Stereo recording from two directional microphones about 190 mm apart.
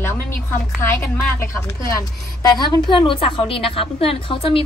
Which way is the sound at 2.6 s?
25° left (ahead or behind).